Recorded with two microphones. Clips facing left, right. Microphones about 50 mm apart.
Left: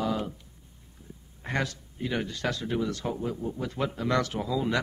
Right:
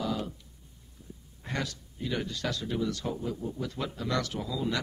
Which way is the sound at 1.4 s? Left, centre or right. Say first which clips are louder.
Left 4 dB; left.